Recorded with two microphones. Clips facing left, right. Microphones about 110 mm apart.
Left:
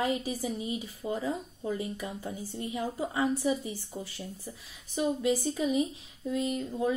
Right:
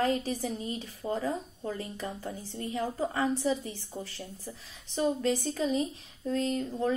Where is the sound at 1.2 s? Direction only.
35° right (ahead or behind).